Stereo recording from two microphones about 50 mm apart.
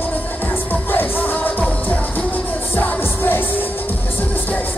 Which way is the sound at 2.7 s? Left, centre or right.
Left.